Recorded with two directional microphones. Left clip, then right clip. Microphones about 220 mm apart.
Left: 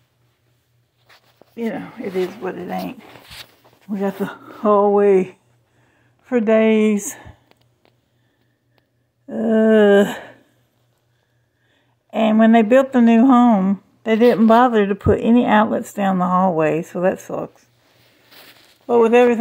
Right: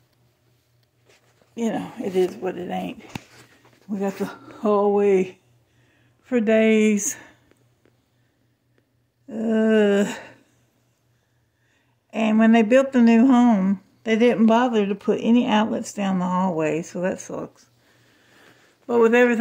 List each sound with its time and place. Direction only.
1.5 s speech: 15° right (ahead or behind)
2.1 s speech: 10° left (ahead or behind)
3.9 s speech: 20° left (ahead or behind); by 6.5 s centre (ahead or behind)
6.6 s speech: 10° left (ahead or behind)
7.0 s speech: centre (ahead or behind)
9.2 s a sound: 20° left (ahead or behind)
9.5 s speech: 10° left (ahead or behind)
11.7 s a sound: 10° left (ahead or behind)
13.5 s speech: 15° left (ahead or behind)
18.9 s speech: 15° left (ahead or behind)